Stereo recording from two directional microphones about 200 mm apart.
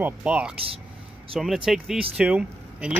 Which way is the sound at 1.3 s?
25° right (ahead or behind).